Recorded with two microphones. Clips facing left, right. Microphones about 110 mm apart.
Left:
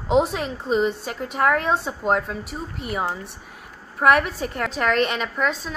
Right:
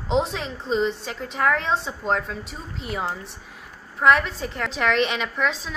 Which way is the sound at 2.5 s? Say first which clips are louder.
Left 3 dB; 55° left (ahead or behind).